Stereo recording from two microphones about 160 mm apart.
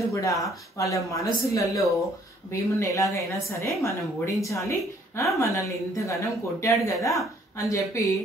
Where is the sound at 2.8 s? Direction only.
20° left (ahead or behind).